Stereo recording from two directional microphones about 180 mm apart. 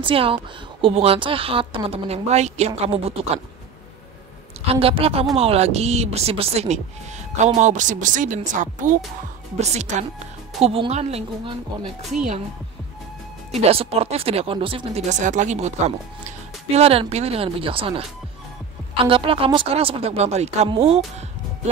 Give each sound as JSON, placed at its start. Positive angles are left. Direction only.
{"t": 0.0, "sound": "speech", "side_deg": -30}
{"t": 4.7, "sound": "speech", "side_deg": -30}
{"t": 12.0, "sound": "speech", "side_deg": 0}
{"t": 13.6, "sound": "speech", "side_deg": -35}
{"t": 19.0, "sound": "speech", "side_deg": -30}